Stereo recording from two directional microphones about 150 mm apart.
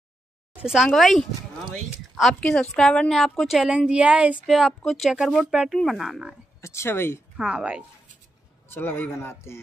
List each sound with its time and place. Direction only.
0.6 s speech: 5° right (ahead or behind)
6.6 s speech: 20° left (ahead or behind)
7.3 s speech: 5° right (ahead or behind)
8.6 s a man's voice: 15° left (ahead or behind)